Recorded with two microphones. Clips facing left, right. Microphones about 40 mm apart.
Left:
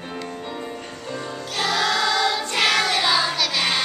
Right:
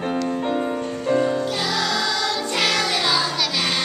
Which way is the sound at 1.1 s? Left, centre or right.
Right.